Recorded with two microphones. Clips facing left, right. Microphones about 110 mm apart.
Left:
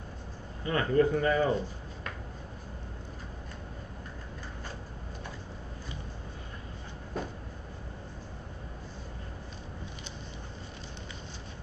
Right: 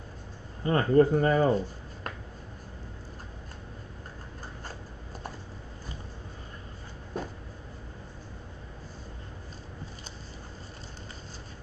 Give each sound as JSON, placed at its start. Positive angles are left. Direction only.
{"t": 0.7, "sound": "speech", "side_deg": -35}